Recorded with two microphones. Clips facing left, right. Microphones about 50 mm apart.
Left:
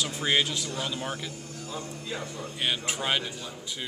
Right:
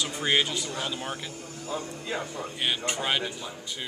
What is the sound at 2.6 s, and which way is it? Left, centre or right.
Speech, centre.